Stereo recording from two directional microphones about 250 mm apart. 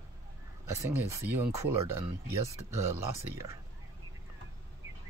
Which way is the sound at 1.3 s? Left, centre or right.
Centre.